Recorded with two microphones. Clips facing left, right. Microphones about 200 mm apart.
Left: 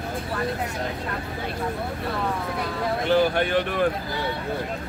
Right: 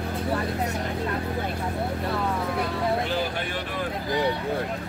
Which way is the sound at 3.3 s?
60° left (ahead or behind).